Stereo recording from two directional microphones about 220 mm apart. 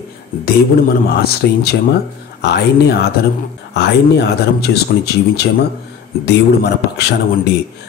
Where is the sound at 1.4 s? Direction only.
50° left (ahead or behind).